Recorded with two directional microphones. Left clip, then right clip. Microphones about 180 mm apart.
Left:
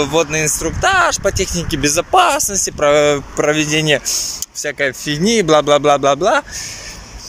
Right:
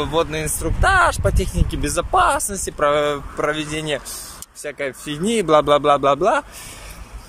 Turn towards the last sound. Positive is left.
turn(degrees=-5)  # may be behind; listen again after turning